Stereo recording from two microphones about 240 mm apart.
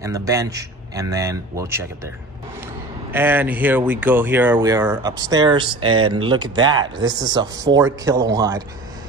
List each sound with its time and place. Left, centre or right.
0.0 s speech: centre
3.1 s speech: centre